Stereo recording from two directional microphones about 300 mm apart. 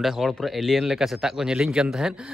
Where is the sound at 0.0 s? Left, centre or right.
Centre.